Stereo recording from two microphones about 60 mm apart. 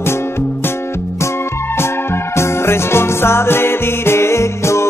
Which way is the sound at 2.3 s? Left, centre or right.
Left.